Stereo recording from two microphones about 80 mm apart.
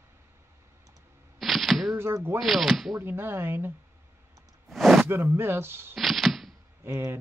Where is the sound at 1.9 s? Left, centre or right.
Right.